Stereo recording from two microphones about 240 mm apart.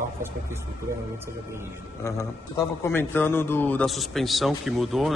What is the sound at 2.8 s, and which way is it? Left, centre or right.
A man's voice, centre.